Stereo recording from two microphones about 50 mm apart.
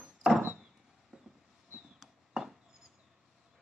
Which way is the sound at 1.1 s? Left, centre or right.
Centre.